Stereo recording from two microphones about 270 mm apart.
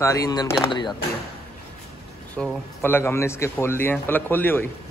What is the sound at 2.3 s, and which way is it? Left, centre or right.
Speech, centre.